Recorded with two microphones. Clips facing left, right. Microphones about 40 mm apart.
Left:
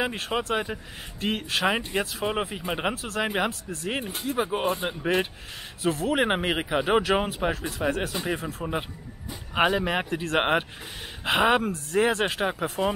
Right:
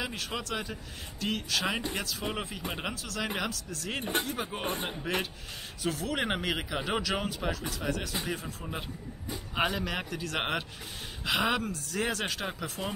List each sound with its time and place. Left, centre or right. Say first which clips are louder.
0.0 s speech: left 8 dB; left
4.0 s speech: right 3 dB; right
4.3 s speech: left 8 dB; left
9.6 s speech: left 7 dB; left